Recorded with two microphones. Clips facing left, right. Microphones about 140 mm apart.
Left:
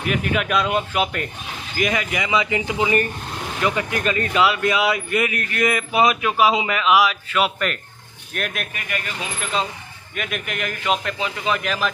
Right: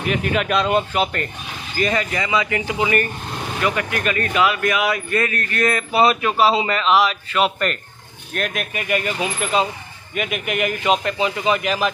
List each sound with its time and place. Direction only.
0.0 s a man's voice: 5° left (ahead or behind)
8.7 s a man's voice: 15° right (ahead or behind)